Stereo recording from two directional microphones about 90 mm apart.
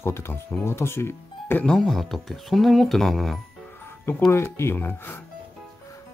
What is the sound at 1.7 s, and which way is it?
Speech, 5° left (ahead or behind).